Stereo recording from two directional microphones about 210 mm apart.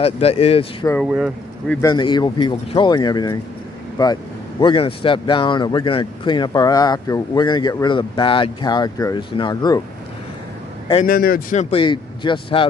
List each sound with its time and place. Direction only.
0.0 s speech: 30° left (ahead or behind)
1.0 s speech: 5° right (ahead or behind)
1.9 s speech: 20° left (ahead or behind)
11.1 s speech: 45° left (ahead or behind)
11.7 s speech: 20° left (ahead or behind)